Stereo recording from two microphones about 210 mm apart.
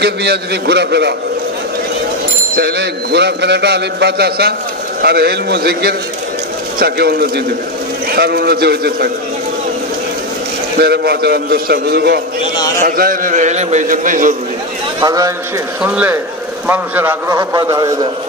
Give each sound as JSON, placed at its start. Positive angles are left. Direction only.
{"t": 0.0, "sound": "a man's voice", "side_deg": -50}
{"t": 2.5, "sound": "a man's voice", "side_deg": -55}
{"t": 10.8, "sound": "a man's voice", "side_deg": -50}
{"t": 15.0, "sound": "a man's voice", "side_deg": -15}